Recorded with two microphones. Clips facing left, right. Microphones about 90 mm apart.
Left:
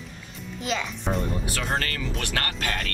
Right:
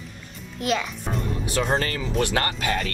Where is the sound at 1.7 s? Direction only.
20° right (ahead or behind).